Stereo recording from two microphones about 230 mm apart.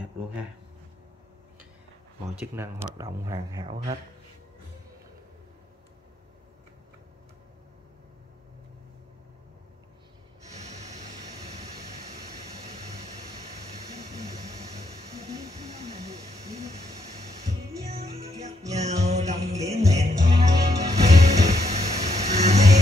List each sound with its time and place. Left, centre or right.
2.4 s speech: centre
10.6 s vehicle: right
17.8 s music: right